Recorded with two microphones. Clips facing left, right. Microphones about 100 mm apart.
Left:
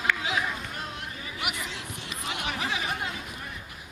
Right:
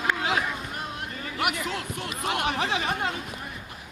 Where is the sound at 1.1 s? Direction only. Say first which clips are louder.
Right 8 dB; 55° right (ahead or behind).